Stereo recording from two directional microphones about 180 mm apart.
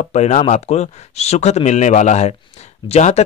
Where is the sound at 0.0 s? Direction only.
40° left (ahead or behind).